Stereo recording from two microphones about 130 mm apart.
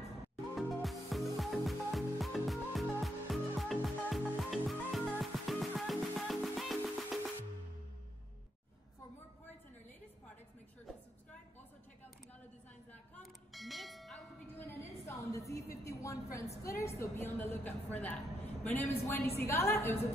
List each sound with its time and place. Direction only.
0.6 s music: centre (ahead or behind)
13.1 s clang: centre (ahead or behind)
14.5 s a sound: 15° left (ahead or behind)
16.6 s a woman's voice: 20° left (ahead or behind)